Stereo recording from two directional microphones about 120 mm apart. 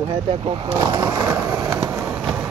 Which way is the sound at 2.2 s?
5° right (ahead or behind).